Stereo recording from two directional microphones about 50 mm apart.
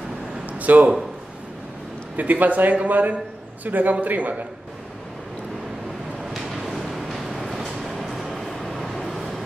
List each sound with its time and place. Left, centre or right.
0.6 s a sound: right
2.1 s speech: right
6.3 s vehicle: centre